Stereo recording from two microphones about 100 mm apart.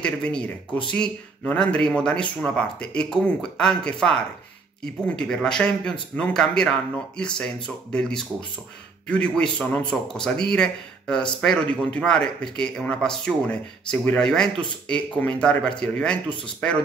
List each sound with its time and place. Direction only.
0.0 s speech: 10° left (ahead or behind)